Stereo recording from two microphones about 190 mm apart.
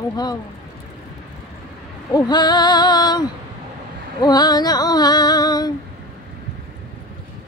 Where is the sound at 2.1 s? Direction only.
20° left (ahead or behind).